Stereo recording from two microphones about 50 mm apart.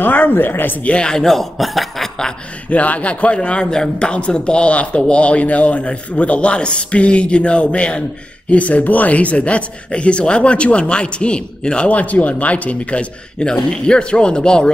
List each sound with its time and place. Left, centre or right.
0.0 s speech: left
0.8 s speech: centre
2.7 s speech: left